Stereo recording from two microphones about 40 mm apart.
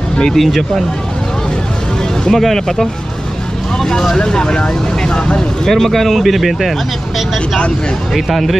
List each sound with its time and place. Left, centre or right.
0.4 s speech: centre
2.2 s speech: centre
5.7 s speech: centre
8.1 s speech: centre